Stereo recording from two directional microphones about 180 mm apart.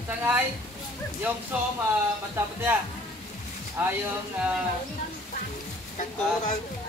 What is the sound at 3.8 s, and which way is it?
Speech, 10° right (ahead or behind).